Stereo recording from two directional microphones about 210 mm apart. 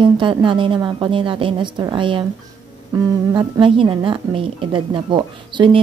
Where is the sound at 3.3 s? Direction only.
20° right (ahead or behind).